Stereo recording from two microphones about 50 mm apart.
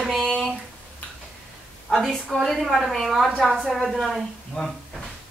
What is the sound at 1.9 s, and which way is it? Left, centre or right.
A woman's voice, centre.